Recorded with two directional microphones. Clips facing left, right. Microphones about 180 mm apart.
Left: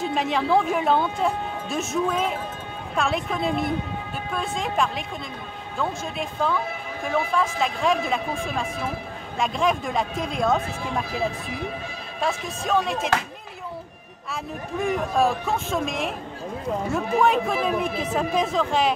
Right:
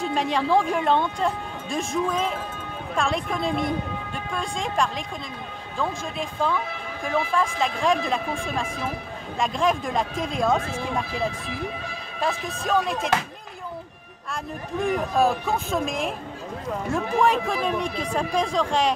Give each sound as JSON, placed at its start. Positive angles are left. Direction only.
{"t": 0.0, "sound": "speech", "side_deg": 0}
{"t": 14.3, "sound": "speech", "side_deg": 0}